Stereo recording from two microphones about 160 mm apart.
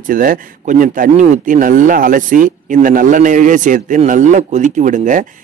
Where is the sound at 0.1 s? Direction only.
60° right (ahead or behind).